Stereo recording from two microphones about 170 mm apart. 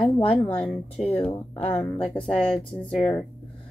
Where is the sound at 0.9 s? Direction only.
35° left (ahead or behind).